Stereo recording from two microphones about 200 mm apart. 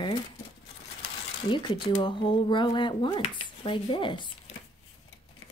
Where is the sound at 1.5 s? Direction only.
25° left (ahead or behind).